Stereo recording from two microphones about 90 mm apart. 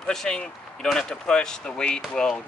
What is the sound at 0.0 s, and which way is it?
Speech, 5° left (ahead or behind).